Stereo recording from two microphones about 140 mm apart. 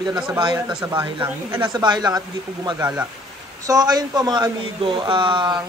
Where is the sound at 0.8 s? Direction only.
20° right (ahead or behind).